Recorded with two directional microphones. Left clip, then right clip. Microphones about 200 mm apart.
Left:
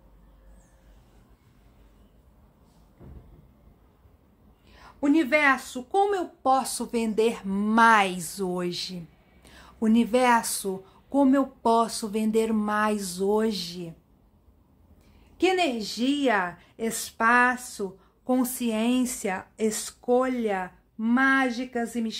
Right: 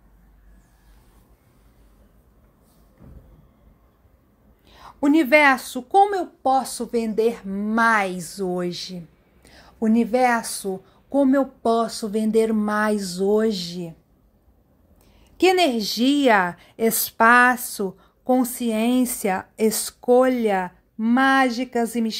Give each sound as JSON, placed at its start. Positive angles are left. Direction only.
{"t": 4.7, "sound": "speech", "side_deg": -30}
{"t": 15.3, "sound": "speech", "side_deg": -30}
{"t": 18.3, "sound": "speech", "side_deg": -15}